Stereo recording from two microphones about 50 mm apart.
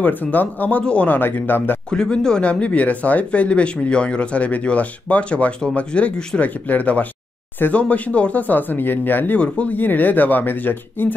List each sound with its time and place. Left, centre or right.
0.0 s speech: left
1.9 s speech: centre; by 9.4 s left
9.4 s speech: left
9.8 s speech: left